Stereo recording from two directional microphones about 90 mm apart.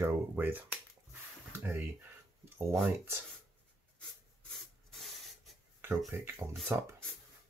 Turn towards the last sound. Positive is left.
turn(degrees=-30)  # may be behind; listen again after turning